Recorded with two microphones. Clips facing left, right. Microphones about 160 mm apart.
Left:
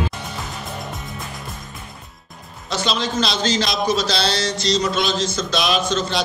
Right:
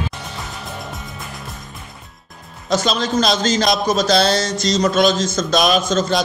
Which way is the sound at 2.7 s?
45° right (ahead or behind).